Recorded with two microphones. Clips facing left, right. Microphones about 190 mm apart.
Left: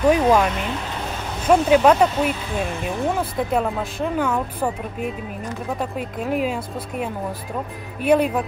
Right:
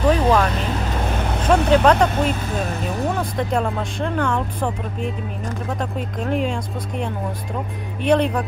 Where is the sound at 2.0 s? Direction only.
50° right (ahead or behind).